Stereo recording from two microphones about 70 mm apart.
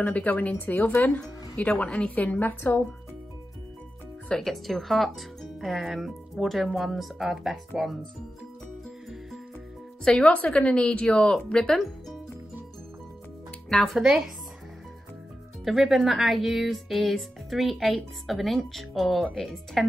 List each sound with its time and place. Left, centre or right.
0.1 s a woman's voice: left
4.3 s speech: centre
10.0 s a woman's voice: centre
13.7 s speech: centre
13.9 s speech: centre
15.6 s speech: centre